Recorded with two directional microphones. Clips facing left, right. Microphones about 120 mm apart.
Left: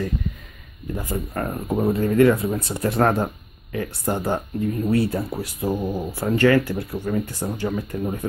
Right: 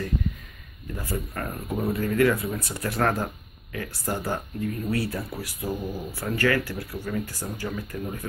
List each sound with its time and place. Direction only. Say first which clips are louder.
0.9 s speech: left 4 dB; 25° left (ahead or behind)